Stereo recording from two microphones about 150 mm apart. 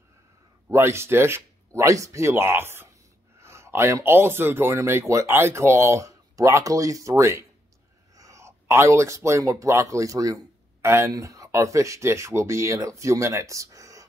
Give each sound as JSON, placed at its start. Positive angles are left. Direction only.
{"t": 0.7, "sound": "speech", "side_deg": -15}